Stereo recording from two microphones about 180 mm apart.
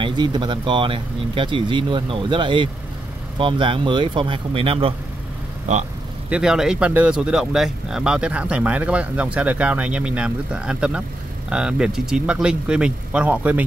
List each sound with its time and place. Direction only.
0.0 s speech: 25° right (ahead or behind)
6.3 s speech: 5° right (ahead or behind)